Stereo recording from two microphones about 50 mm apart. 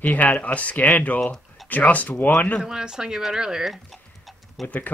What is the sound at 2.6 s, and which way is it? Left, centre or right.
Speech, centre.